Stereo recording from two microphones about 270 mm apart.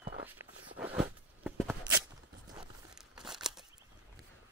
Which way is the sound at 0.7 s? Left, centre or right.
Centre.